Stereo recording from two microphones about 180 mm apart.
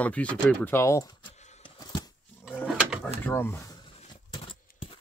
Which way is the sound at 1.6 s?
25° left (ahead or behind).